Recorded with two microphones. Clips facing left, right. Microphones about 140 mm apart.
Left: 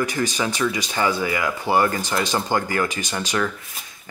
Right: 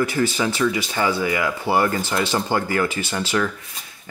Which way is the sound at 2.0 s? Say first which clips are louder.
Right 1 dB; 15° left (ahead or behind).